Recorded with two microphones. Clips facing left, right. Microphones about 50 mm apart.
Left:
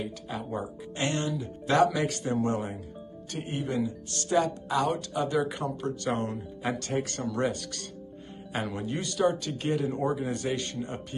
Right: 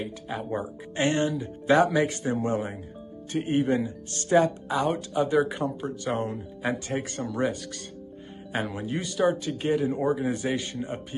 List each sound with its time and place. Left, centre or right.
0.5 s speech: right
1.3 s speech: centre
3.3 s speech: right
4.7 s speech: centre